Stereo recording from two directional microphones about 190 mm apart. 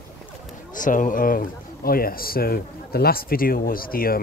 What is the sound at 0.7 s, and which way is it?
Speech, 45° left (ahead or behind).